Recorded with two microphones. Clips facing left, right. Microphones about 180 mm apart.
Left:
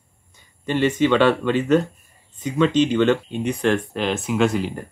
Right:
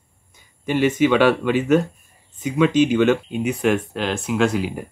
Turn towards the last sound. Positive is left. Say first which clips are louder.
# even
turn(degrees=-5)  # may be behind; listen again after turning